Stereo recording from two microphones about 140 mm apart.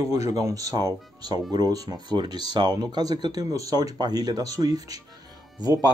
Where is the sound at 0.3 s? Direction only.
25° right (ahead or behind).